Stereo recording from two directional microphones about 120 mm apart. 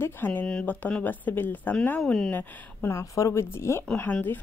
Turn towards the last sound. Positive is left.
turn(degrees=15)  # may be behind; listen again after turning